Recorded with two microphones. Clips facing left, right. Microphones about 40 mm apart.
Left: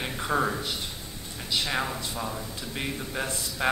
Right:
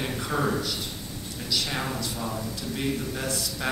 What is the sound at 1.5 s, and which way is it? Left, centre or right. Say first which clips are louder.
Speech: left 1 dB; left.